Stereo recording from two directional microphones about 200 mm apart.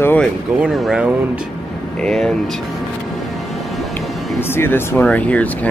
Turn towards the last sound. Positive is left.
turn(degrees=5)  # may be behind; listen again after turning